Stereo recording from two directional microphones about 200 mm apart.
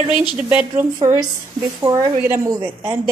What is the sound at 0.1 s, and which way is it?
Speech, 25° left (ahead or behind).